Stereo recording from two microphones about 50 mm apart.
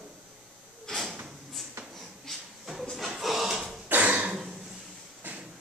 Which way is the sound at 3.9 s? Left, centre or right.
Right.